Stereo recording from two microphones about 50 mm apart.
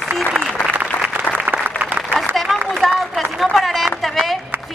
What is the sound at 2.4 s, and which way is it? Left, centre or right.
Run, centre.